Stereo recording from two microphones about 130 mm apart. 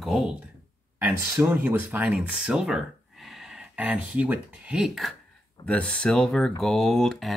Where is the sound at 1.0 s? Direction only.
15° right (ahead or behind).